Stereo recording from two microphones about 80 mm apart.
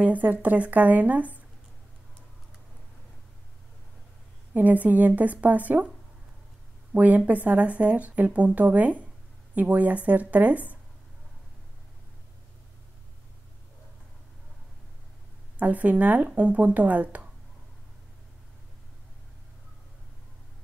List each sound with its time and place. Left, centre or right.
0.0 s speech: centre
4.6 s speech: right
6.9 s a woman's voice: centre
15.6 s speech: centre